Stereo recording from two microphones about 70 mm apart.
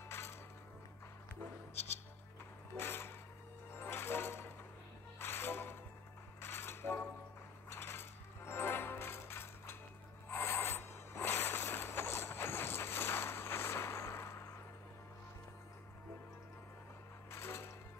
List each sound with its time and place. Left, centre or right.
0.1 s music: left
2.8 s a sound: left
3.7 s coin: left
5.2 s music: left
6.4 s cutlery: left
7.7 s music: left
10.2 s a sound: left
17.3 s music: left